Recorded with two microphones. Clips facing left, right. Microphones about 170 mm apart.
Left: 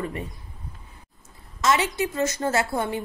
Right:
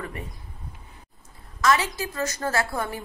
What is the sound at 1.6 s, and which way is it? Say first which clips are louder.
A woman's voice: left 1 dB; 25° left (ahead or behind).